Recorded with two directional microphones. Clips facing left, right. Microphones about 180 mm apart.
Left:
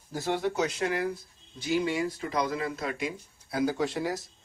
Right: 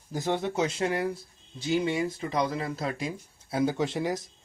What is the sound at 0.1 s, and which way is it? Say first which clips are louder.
Speech: right 1 dB; 20° right (ahead or behind).